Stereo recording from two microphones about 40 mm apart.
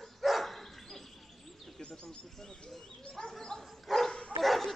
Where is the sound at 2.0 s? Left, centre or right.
Centre.